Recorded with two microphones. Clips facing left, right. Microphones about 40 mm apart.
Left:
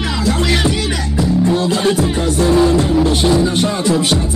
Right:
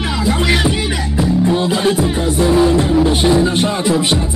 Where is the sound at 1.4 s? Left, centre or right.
Centre.